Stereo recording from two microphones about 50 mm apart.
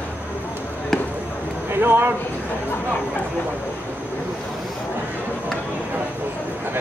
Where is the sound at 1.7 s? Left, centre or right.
Right.